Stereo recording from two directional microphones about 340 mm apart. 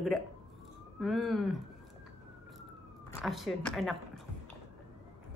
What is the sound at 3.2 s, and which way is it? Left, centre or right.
Speech, centre.